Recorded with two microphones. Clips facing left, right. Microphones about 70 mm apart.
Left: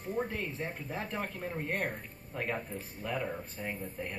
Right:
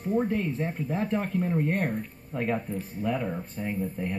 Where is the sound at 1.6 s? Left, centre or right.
Right.